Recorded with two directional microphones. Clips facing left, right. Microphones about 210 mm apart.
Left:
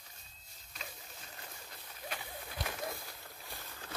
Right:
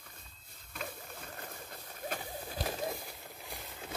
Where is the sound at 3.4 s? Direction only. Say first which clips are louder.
Right 4 dB; 15° right (ahead or behind).